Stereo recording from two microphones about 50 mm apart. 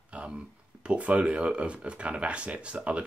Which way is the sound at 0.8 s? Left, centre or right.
Right.